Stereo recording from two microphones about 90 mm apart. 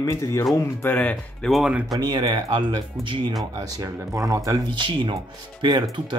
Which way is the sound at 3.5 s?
40° right (ahead or behind).